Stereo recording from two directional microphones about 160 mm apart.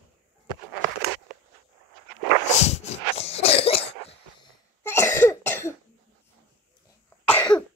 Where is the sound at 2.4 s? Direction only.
40° left (ahead or behind).